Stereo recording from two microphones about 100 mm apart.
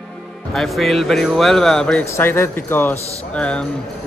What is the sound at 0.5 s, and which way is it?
Speech, centre (ahead or behind).